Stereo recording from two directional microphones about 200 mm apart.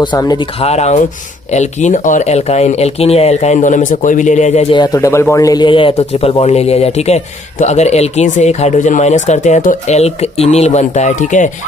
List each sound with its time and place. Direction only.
0.0 s speech: 20° left (ahead or behind); by 11.5 s 40° left (ahead or behind)